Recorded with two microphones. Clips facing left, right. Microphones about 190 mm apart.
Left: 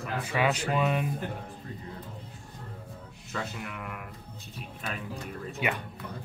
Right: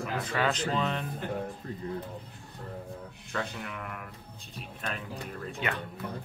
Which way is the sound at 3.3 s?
5° left (ahead or behind).